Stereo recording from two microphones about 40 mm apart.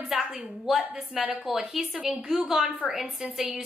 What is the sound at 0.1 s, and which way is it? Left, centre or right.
Speech, centre.